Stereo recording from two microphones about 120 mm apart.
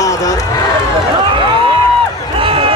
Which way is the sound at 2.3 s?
50° right (ahead or behind).